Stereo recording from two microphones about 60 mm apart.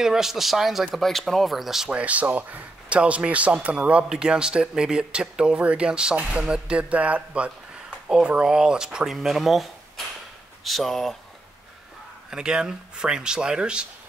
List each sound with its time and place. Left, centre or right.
0.0 s speech: centre
1.9 s speech: right; by 11.1 s centre
12.3 s speech: centre